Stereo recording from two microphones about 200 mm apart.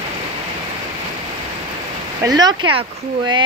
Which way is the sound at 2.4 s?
20° right (ahead or behind).